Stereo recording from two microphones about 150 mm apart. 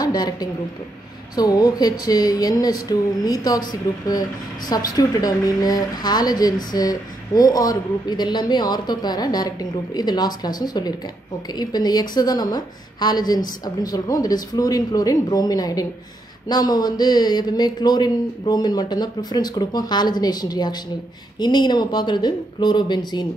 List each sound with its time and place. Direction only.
0.0 s a woman's voice: 25° left (ahead or behind)
4.6 s a woman's voice: 25° left (ahead or behind)